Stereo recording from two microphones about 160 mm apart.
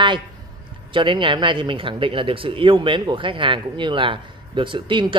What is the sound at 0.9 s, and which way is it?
Speech, 30° right (ahead or behind).